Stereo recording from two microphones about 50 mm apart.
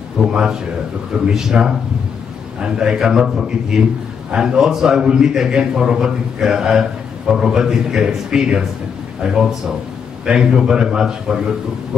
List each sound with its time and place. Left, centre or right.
0.3 s a man's voice: centre